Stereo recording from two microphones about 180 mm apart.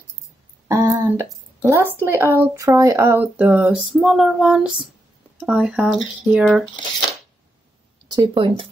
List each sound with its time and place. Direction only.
0.7 s a sound: 15° right (ahead or behind)
1.6 s a woman's voice: 10° right (ahead or behind)
8.1 s speech: 25° right (ahead or behind)